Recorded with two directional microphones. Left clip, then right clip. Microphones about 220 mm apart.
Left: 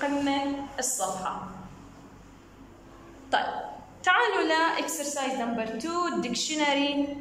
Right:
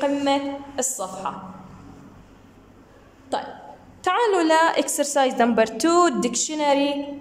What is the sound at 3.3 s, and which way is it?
A woman's voice, 20° right (ahead or behind).